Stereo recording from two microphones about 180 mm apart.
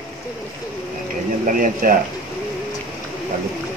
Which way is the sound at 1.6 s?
50° right (ahead or behind).